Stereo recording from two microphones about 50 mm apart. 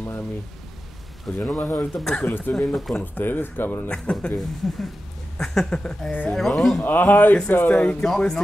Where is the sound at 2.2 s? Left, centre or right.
Left.